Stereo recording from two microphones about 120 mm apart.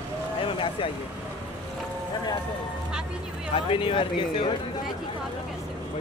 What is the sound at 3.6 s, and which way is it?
Speech, 45° left (ahead or behind).